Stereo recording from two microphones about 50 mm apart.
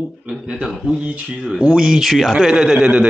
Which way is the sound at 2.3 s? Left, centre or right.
Centre.